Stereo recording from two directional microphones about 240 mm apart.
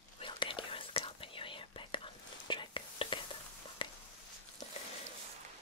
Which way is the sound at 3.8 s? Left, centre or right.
Left.